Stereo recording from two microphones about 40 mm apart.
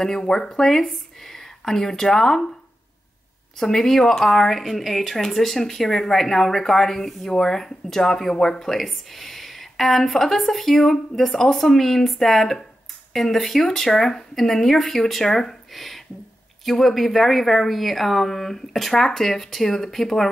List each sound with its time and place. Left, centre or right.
0.0 s speech: centre
3.5 s speech: centre
15.7 s a sound: centre
16.6 s speech: centre